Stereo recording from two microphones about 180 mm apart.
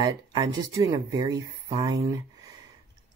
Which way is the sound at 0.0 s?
20° right (ahead or behind).